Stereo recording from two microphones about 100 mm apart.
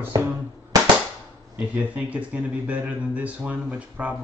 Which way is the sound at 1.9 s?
15° right (ahead or behind).